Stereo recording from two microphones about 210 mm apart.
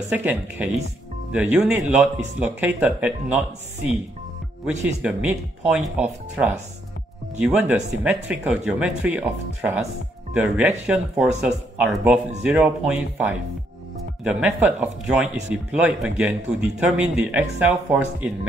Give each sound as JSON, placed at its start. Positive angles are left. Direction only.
{"t": 0.1, "sound": "speech", "side_deg": -5}